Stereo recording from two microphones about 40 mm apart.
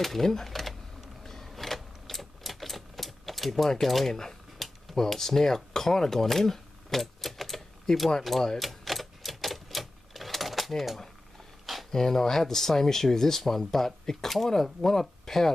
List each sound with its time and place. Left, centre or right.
0.0 s a sound: centre
3.8 s speech: centre
4.6 s a sound: centre
4.9 s speech: centre
8.2 s typewriter: centre
11.9 s speech: centre